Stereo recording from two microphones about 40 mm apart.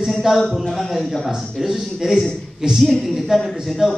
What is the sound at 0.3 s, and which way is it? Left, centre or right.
A woman's voice, centre.